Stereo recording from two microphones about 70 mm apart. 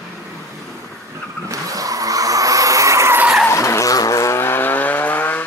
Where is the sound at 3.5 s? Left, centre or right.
Left.